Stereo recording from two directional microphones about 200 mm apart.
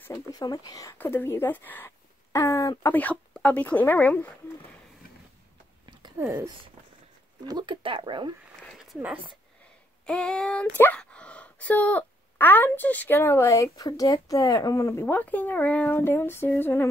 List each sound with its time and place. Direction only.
0.0 s speech: 15° left (ahead or behind)
6.1 s speech: 10° right (ahead or behind)
7.4 s speech: 20° right (ahead or behind)
8.6 s a sound: 5° right (ahead or behind)
10.0 s female singing: 5° left (ahead or behind)
10.8 s speech: 5° left (ahead or behind)